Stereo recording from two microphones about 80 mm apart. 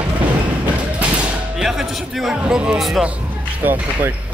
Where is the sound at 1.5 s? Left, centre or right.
Centre.